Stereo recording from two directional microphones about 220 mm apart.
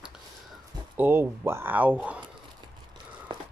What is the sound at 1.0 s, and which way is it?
Speech, 10° right (ahead or behind).